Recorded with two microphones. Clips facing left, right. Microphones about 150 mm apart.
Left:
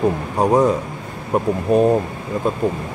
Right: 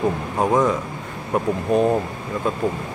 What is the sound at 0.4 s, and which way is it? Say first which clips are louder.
Speech: left 3 dB; 35° left (ahead or behind).